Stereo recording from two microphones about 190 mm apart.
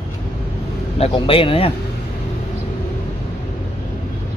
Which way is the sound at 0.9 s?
30° left (ahead or behind).